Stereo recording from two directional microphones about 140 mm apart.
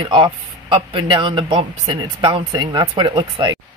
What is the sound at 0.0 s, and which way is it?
Speech, 35° right (ahead or behind).